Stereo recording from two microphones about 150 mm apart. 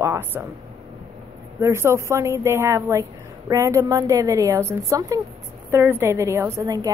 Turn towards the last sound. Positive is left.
turn(degrees=-25)  # may be behind; listen again after turning